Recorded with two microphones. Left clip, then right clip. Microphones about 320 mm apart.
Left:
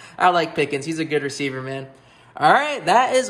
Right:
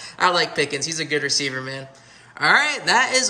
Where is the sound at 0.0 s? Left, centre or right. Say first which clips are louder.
Left 2 dB; centre.